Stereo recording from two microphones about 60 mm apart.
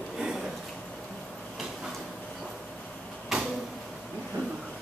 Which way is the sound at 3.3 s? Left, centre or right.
Centre.